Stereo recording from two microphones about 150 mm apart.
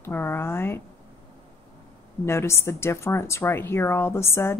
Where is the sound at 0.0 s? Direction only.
15° left (ahead or behind).